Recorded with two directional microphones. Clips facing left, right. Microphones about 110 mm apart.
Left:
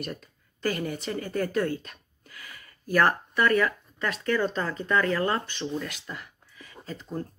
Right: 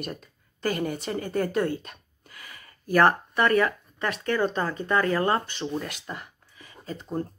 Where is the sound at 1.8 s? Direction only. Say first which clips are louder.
Right 2 dB; 25° right (ahead or behind).